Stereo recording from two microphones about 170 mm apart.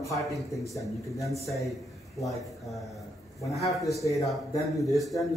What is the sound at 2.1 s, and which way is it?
Speech, centre (ahead or behind).